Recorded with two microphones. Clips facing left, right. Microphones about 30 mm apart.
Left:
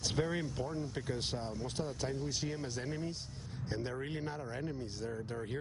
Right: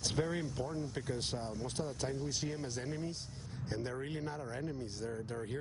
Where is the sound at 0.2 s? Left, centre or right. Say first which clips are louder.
Left 1 dB; centre.